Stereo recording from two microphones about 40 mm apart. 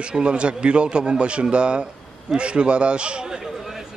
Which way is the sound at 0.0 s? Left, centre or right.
Right.